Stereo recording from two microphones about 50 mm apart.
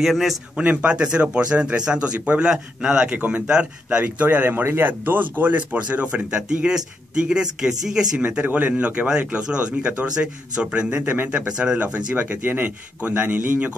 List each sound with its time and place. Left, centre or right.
0.0 s a man's voice: centre
0.6 s speech: right
2.8 s speech: centre
3.2 s a man's voice: right
3.4 s speech: centre
4.0 s a man's voice: right; by 8.1 s centre
8.4 s speech: right
11.1 s a man's voice: right
11.4 s speech: centre
11.8 s a man's voice: right